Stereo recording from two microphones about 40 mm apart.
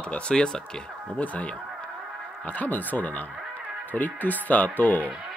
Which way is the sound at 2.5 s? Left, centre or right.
Left.